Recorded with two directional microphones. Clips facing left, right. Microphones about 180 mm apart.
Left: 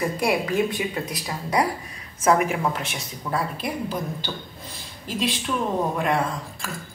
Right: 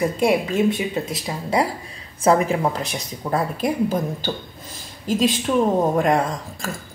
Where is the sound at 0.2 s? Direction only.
25° right (ahead or behind); by 4.3 s 45° right (ahead or behind).